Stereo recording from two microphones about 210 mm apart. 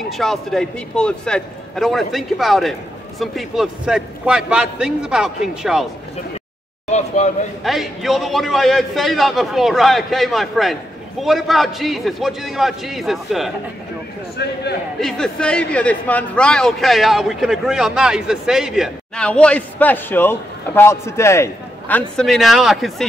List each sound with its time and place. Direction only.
0.2 s a man's voice: centre (ahead or behind)
6.9 s speech: 30° left (ahead or behind)
7.6 s a man's voice: centre (ahead or behind)
14.3 s speech: 50° left (ahead or behind)
15.0 s a man's voice: 5° left (ahead or behind)